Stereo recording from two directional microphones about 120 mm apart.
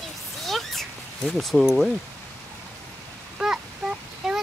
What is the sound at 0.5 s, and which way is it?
Cat, centre (ahead or behind).